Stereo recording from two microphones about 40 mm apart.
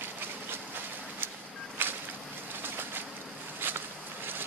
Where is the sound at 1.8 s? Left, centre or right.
Right.